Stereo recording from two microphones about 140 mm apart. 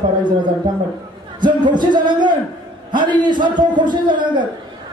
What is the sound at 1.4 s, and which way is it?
Speech, 35° right (ahead or behind).